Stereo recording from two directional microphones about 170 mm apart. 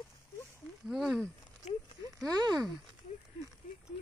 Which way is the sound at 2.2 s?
25° right (ahead or behind).